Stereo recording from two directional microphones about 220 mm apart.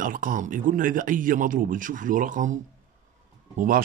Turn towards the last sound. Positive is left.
turn(degrees=-40)  # may be behind; listen again after turning